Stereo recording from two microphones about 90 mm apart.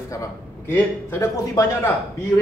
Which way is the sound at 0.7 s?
25° left (ahead or behind).